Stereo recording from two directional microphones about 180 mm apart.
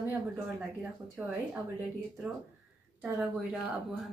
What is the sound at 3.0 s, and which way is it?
Speech, 10° right (ahead or behind).